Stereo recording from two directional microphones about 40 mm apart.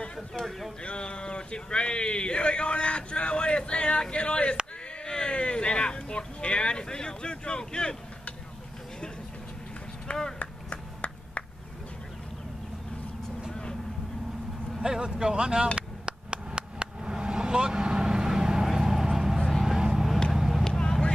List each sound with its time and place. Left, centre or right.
0.3 s speech: left
10.1 s speech: left
10.4 s a sound: left
14.8 s a sound: centre
19.6 s vehicle: centre
20.7 s vehicle: centre